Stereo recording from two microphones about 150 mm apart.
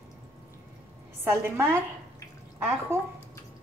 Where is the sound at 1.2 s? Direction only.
15° right (ahead or behind).